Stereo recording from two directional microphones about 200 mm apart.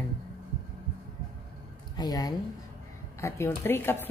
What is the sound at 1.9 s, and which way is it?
Speech, 20° left (ahead or behind).